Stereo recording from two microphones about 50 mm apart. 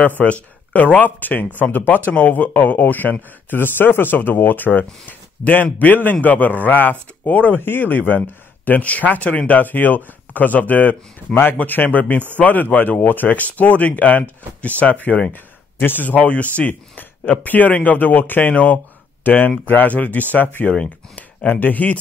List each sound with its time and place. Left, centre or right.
0.2 s a man's voice: left
15.3 s a man's voice: left